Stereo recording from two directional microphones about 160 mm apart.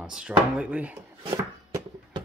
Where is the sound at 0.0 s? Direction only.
5° right (ahead or behind).